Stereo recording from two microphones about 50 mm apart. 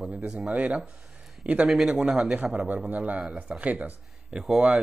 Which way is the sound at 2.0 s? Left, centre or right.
Centre.